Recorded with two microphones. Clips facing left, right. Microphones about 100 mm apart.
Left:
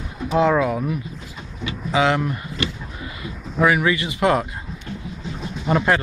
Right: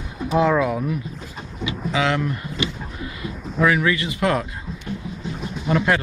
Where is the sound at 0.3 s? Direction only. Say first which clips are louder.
Left 1 dB; centre (ahead or behind).